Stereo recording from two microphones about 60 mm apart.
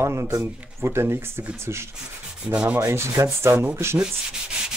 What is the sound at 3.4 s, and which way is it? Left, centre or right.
Speech, right.